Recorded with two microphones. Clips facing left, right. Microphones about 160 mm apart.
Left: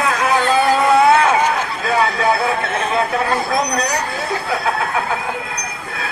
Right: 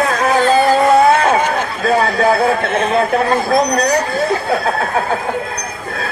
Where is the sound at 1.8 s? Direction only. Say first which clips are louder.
Right 4 dB; 40° right (ahead or behind).